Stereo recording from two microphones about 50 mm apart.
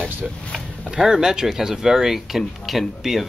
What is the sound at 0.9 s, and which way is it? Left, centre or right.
Speech, centre.